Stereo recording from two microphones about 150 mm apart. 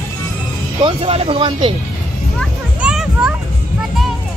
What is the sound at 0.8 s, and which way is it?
Speech, 40° right (ahead or behind).